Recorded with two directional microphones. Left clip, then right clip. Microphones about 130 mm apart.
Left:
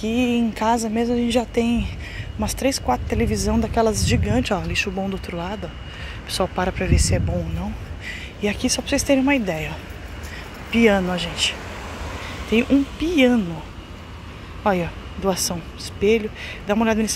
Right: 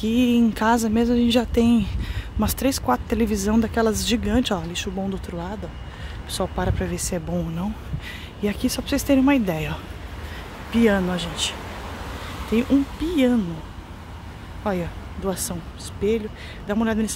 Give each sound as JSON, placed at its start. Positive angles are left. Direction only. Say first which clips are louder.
{"t": 0.0, "sound": "speech", "louder": "right 1 dB", "side_deg": -40}
{"t": 4.3, "sound": "speech", "louder": "left 1 dB", "side_deg": -25}
{"t": 4.6, "sound": "speech", "louder": "left 5 dB", "side_deg": -10}
{"t": 8.1, "sound": "speech", "louder": "left 3 dB", "side_deg": -35}
{"t": 10.7, "sound": "speech", "louder": "left 3 dB", "side_deg": -15}
{"t": 12.5, "sound": "speech", "louder": "left 2 dB", "side_deg": -5}
{"t": 14.6, "sound": "speech", "louder": "left 6 dB", "side_deg": 5}